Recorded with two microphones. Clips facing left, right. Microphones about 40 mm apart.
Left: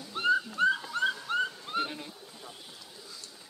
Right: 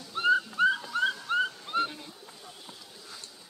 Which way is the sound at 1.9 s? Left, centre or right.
Centre.